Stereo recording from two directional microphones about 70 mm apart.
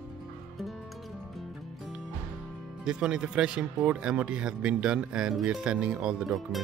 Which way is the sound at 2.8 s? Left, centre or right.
Centre.